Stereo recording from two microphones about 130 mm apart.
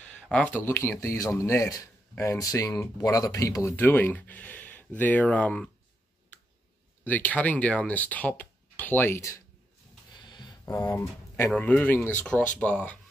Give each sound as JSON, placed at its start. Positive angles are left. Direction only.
{"t": 0.0, "sound": "speech", "side_deg": 10}
{"t": 7.1, "sound": "speech", "side_deg": 10}
{"t": 10.1, "sound": "a sound", "side_deg": 35}
{"t": 10.6, "sound": "speech", "side_deg": 20}